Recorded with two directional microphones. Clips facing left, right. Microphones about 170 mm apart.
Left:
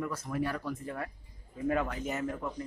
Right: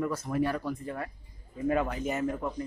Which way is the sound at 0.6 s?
5° right (ahead or behind).